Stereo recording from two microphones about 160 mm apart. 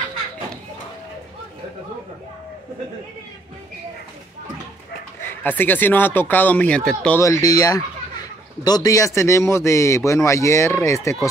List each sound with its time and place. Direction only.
5.2 s speech: 15° left (ahead or behind)
7.2 s speech: 20° left (ahead or behind)